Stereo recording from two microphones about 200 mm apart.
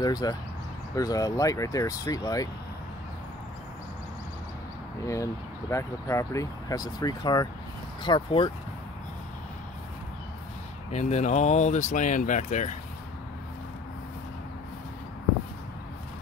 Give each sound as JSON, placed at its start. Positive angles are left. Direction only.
{"t": 0.0, "sound": "speech", "side_deg": 20}
{"t": 5.0, "sound": "speech", "side_deg": 15}
{"t": 10.9, "sound": "speech", "side_deg": 35}